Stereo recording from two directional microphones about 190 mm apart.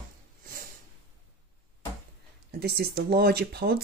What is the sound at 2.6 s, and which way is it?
Speech, 55° right (ahead or behind).